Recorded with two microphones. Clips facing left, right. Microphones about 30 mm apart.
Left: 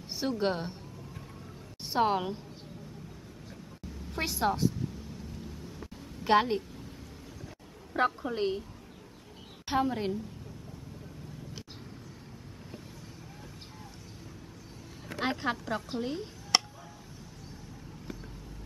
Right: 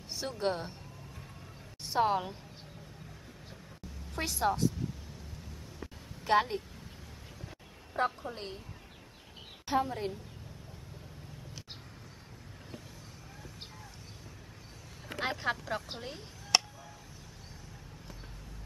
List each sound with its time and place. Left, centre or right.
0.1 s speech: centre
1.9 s speech: centre
4.1 s speech: centre
6.2 s a woman's voice: left
7.9 s a woman's voice: left
9.7 s a woman's voice: centre
15.2 s a woman's voice: centre
16.0 s a sound: centre